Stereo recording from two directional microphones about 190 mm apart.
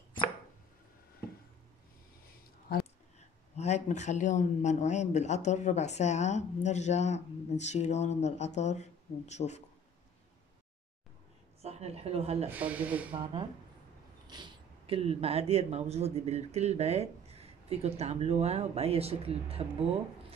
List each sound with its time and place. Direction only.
3.2 s speech: 35° left (ahead or behind)
11.6 s speech: 35° right (ahead or behind)
12.4 s speech: 10° right (ahead or behind)
13.1 s speech: 25° right (ahead or behind)